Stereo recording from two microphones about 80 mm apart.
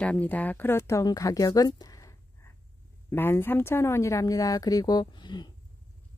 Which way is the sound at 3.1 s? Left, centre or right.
Left.